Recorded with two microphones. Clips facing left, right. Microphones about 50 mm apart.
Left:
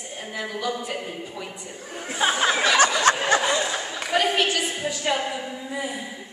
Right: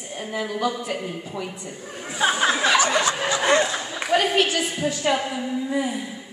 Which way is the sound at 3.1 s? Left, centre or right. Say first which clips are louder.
Left 5 dB; left.